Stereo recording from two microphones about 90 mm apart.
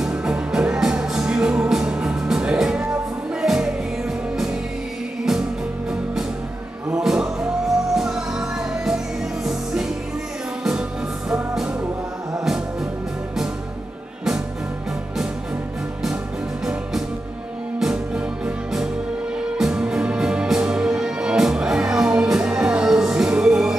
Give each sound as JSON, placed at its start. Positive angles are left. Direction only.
{"t": 0.0, "sound": "music", "side_deg": -10}
{"t": 6.9, "sound": "music", "side_deg": -5}
{"t": 11.2, "sound": "music", "side_deg": -5}
{"t": 17.7, "sound": "music", "side_deg": -10}